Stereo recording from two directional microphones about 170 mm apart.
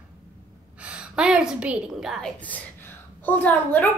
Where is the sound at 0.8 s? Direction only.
5° right (ahead or behind).